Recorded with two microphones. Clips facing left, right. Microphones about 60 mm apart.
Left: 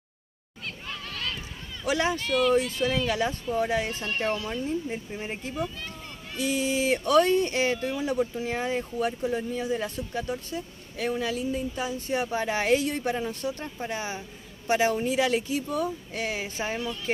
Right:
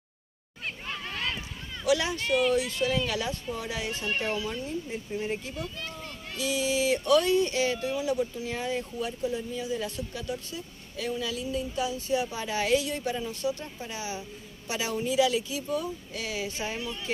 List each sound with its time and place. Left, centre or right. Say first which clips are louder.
0.8 s a sound: right 1 dB; right
1.9 s speech: even; left
2.2 s speech: right 1 dB; centre
2.5 s speech: left 2 dB; left
4.0 s speech: left 2 dB; centre
4.5 s speech: left 4 dB; left
5.1 s speech: right 3 dB; left
6.3 s speech: left 1 dB; left